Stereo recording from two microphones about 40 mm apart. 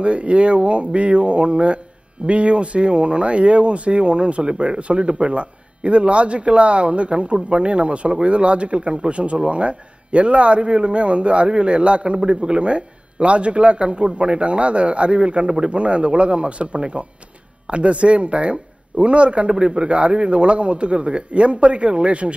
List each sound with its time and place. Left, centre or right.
0.0 s a man's voice: right